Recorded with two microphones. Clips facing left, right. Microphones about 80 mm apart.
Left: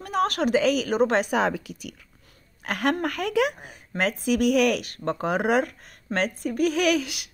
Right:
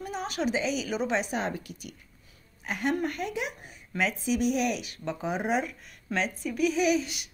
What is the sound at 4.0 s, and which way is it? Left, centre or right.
Speech, left.